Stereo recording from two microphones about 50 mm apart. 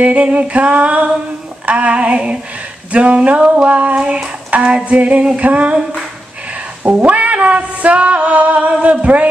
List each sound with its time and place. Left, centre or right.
0.0 s music: right
6.8 s music: right